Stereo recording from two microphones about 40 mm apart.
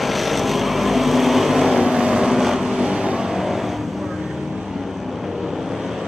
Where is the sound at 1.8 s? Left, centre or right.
Centre.